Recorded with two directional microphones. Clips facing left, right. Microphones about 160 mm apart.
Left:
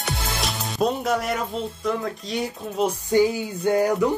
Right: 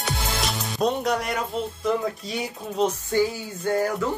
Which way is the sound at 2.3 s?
Centre (ahead or behind).